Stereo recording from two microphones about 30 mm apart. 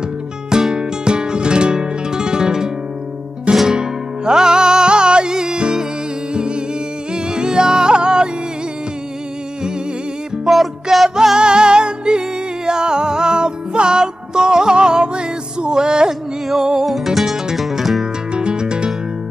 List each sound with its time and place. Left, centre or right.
0.5 s music: right
10.4 s music: centre
11.3 s music: right
16.8 s music: centre
18.3 s music: right